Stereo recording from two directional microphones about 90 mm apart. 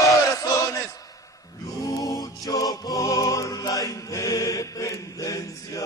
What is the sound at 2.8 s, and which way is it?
Chant, 35° left (ahead or behind).